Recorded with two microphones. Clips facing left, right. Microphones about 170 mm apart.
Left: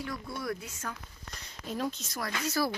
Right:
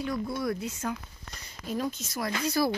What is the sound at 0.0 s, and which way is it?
Speech, 20° right (ahead or behind).